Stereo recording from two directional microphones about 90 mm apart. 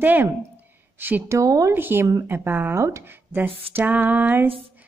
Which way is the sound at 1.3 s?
40° right (ahead or behind).